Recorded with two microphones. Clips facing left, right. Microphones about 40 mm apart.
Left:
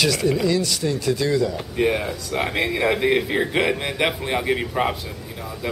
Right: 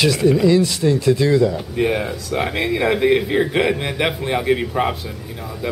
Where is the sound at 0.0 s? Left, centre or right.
Centre.